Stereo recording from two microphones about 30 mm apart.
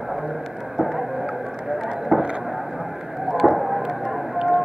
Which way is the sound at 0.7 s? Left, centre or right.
Centre.